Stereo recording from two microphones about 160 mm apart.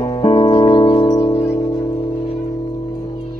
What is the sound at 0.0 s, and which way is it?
Music, 30° left (ahead or behind).